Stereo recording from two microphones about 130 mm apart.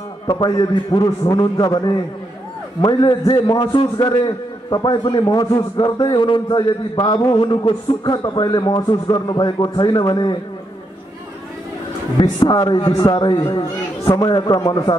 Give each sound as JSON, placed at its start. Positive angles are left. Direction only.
{"t": 0.3, "sound": "a man's voice", "side_deg": 35}
{"t": 12.2, "sound": "a man's voice", "side_deg": 35}